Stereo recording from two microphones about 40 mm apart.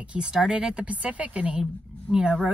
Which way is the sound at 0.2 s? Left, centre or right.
Centre.